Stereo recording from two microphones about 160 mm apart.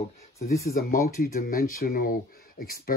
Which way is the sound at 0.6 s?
60° left (ahead or behind).